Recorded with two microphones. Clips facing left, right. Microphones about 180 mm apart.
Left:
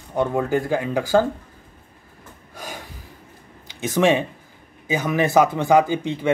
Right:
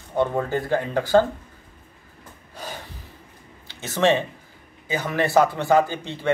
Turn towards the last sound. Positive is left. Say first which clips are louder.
# left 3 dB
turn(degrees=15)  # may be behind; listen again after turning